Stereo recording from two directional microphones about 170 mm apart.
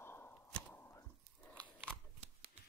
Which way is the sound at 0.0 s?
15° left (ahead or behind).